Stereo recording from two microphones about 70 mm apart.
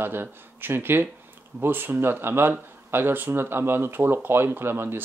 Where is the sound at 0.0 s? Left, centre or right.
Right.